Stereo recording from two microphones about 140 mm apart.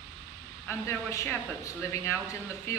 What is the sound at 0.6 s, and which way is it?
Speech, 20° left (ahead or behind).